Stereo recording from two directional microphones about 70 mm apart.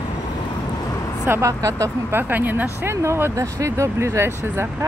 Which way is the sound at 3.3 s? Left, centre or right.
Right.